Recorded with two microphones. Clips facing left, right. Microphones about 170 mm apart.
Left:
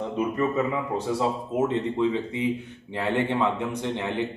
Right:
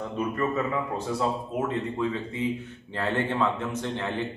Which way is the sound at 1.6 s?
20° left (ahead or behind).